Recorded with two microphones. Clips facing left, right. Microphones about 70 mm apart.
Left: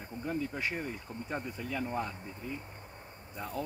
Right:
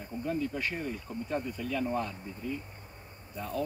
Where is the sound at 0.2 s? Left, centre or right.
Left.